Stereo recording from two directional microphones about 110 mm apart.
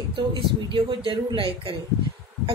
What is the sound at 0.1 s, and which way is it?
A woman's voice, 45° right (ahead or behind).